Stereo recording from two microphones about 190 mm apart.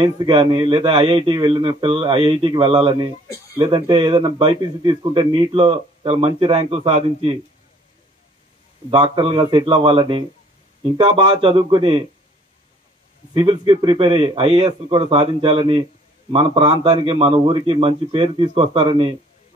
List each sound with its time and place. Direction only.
0.0 s a man's voice: 25° right (ahead or behind)
8.9 s a man's voice: 25° right (ahead or behind)
13.3 s a man's voice: 25° right (ahead or behind)